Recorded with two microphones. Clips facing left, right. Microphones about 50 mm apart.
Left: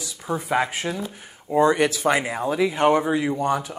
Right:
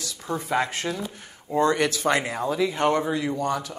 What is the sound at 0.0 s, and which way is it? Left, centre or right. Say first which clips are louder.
Speech: left 2 dB; centre.